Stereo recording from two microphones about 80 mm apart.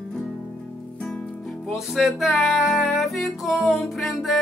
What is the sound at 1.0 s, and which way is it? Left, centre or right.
Music, centre.